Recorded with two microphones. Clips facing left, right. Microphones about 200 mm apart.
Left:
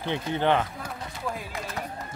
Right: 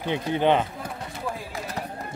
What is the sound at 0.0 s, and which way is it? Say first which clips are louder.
Speech: right 3 dB; 15° right (ahead or behind).